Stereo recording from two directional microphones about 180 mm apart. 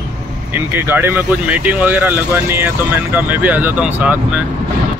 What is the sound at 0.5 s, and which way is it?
Speech, 10° right (ahead or behind).